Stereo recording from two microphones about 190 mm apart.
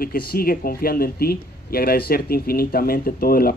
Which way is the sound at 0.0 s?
50° left (ahead or behind).